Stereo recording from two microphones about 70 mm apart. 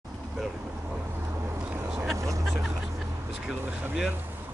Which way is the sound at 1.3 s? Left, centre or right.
Right.